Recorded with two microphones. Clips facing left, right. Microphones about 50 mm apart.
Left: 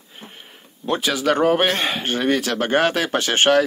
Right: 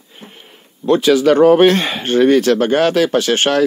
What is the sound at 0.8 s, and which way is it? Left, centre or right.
Speech, centre.